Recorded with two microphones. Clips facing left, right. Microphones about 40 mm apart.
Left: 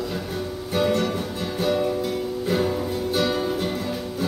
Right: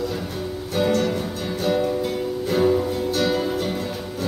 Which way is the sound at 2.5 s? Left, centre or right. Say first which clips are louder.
Right 5 dB; centre.